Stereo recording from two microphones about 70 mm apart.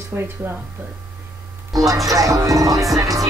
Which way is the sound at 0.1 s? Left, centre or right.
Right.